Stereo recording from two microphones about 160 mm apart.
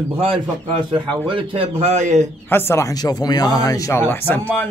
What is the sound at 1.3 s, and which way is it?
A man's voice, 30° right (ahead or behind).